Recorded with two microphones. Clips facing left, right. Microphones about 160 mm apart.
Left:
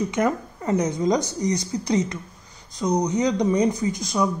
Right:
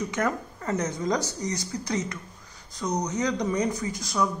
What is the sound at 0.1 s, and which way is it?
Speech, 15° left (ahead or behind).